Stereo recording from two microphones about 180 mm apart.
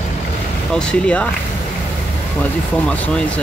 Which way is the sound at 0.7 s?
5° left (ahead or behind).